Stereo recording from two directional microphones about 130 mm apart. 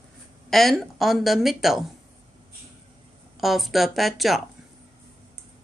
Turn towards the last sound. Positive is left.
turn(degrees=0)  # may be behind; listen again after turning